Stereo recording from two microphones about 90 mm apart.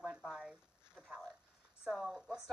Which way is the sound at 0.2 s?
5° right (ahead or behind).